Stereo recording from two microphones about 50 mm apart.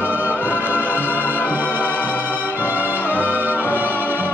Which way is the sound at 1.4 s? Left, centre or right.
Left.